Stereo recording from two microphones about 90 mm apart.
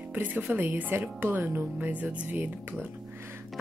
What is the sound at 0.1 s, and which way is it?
Speech, 20° right (ahead or behind).